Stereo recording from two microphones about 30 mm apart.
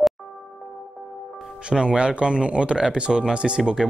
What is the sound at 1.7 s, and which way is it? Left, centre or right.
Speech, right.